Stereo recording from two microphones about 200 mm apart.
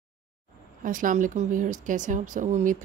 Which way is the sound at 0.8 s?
40° right (ahead or behind).